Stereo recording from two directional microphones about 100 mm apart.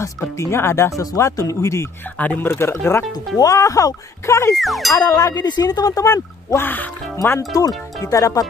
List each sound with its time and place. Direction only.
0.0 s speech: 30° left (ahead or behind)
2.1 s speech: 15° left (ahead or behind); by 4.6 s 30° left (ahead or behind)
4.6 s speech: centre (ahead or behind)
4.9 s speech: 35° left (ahead or behind)
6.6 s speech: 20° left (ahead or behind)
7.2 s speech: 35° left (ahead or behind)